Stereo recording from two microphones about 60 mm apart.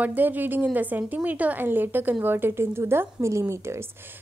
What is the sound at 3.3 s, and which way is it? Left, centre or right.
Speech, right.